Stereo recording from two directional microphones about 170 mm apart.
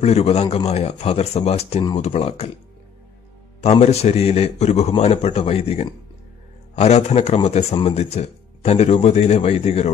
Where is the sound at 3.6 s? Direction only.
40° left (ahead or behind).